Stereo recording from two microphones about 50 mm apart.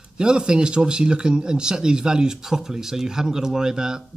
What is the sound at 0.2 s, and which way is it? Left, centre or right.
Speech, centre.